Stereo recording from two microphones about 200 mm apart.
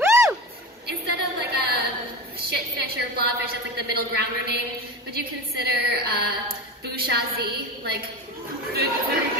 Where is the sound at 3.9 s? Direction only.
55° right (ahead or behind).